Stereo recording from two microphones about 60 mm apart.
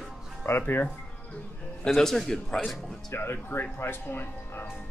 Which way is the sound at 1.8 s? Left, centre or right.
Centre.